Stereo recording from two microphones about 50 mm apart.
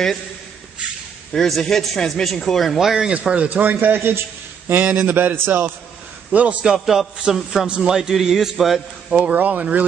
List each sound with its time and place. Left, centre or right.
1.3 s speech: centre
2.8 s a man's voice: centre
3.1 s speech: centre
3.4 s a man's voice: right
6.6 s a man's voice: centre
9.1 s speech: right